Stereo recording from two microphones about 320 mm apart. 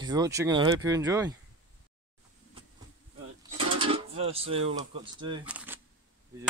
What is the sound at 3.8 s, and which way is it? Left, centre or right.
Speech, centre.